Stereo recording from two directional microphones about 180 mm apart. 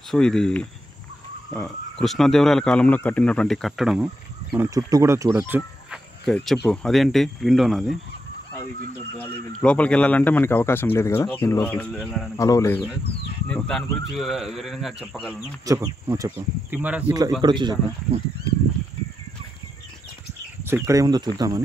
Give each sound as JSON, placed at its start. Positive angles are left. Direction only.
{"t": 0.1, "sound": "speech", "side_deg": 5}
{"t": 2.0, "sound": "speech", "side_deg": 0}
{"t": 4.6, "sound": "speech", "side_deg": -20}
{"t": 5.9, "sound": "speech", "side_deg": 0}
{"t": 9.2, "sound": "speech", "side_deg": 5}
{"t": 12.4, "sound": "speech", "side_deg": 20}
{"t": 15.6, "sound": "speech", "side_deg": -20}
{"t": 17.4, "sound": "speech", "side_deg": -25}
{"t": 20.6, "sound": "speech", "side_deg": -15}